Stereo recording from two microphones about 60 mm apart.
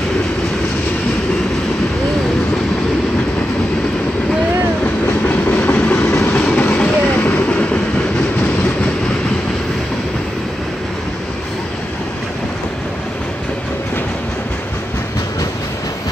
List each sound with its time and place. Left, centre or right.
5.0 s train: left
5.9 s train: centre